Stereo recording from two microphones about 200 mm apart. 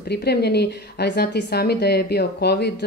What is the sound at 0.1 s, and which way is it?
Speech, 55° left (ahead or behind).